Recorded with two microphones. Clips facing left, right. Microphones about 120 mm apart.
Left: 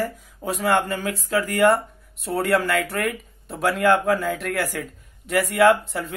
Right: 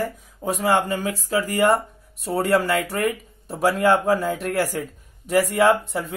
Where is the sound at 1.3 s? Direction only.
25° right (ahead or behind).